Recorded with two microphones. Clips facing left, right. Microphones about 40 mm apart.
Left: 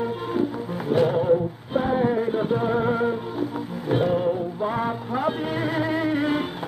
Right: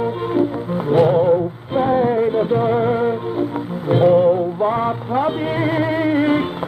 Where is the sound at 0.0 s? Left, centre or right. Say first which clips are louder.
Right 6 dB; right.